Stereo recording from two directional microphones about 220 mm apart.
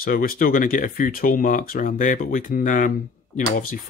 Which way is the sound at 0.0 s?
40° left (ahead or behind).